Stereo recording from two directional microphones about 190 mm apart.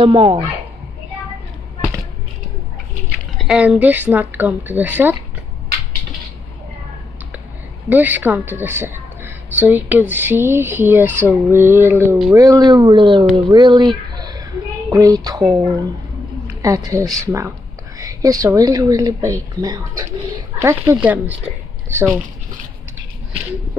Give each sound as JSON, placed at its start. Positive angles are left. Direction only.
{"t": 0.0, "sound": "speech", "side_deg": -25}
{"t": 3.3, "sound": "a woman's voice", "side_deg": -5}
{"t": 7.9, "sound": "a woman's voice", "side_deg": -10}